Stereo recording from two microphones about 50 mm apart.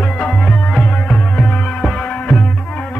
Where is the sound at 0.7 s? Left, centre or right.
Centre.